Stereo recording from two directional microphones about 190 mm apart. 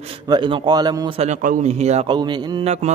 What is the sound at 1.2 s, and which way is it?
A man's voice, 40° right (ahead or behind).